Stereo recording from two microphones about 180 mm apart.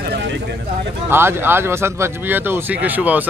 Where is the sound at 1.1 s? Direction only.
10° right (ahead or behind).